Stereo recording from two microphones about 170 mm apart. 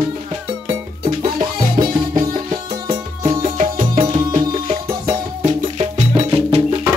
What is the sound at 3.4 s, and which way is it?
Music, 45° right (ahead or behind).